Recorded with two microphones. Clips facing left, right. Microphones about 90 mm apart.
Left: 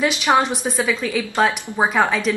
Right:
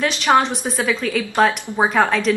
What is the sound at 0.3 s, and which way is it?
A woman's voice, 5° left (ahead or behind).